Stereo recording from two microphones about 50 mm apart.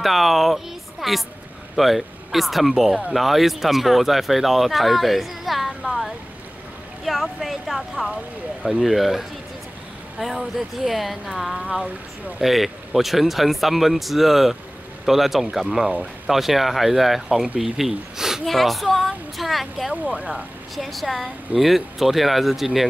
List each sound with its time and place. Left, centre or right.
0.0 s a woman's voice: centre
12.4 s speech: centre
18.4 s speech: centre
19.9 s speech: right
20.7 s speech: centre